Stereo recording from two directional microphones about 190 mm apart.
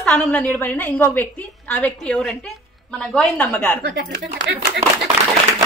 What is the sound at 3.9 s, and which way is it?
Speech, 65° right (ahead or behind).